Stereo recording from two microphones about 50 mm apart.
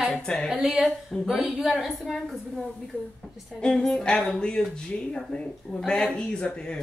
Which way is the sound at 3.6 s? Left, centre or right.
Centre.